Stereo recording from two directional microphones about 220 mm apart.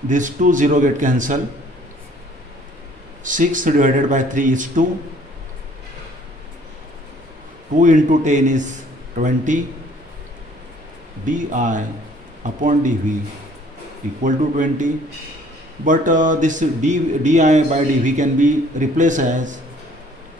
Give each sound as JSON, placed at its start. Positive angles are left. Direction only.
{"t": 0.1, "sound": "speech", "side_deg": -35}
{"t": 3.3, "sound": "speech", "side_deg": -35}
{"t": 7.7, "sound": "speech", "side_deg": -35}
{"t": 11.2, "sound": "speech", "side_deg": -35}
{"t": 14.2, "sound": "speech", "side_deg": -35}